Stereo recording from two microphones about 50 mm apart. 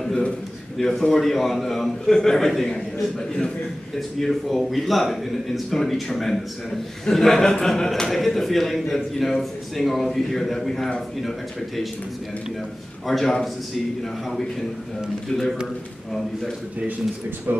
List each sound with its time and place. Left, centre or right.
0.7 s a man's voice: centre
4.2 s a man's voice: centre
13.0 s a man's voice: centre
15.2 s a man's voice: centre
17.5 s speech: right